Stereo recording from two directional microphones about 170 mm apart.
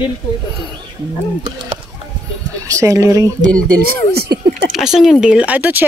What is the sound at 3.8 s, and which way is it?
Speech, 65° right (ahead or behind).